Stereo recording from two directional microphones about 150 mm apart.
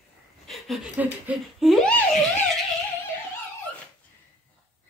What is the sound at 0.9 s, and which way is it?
Speech, 10° right (ahead or behind).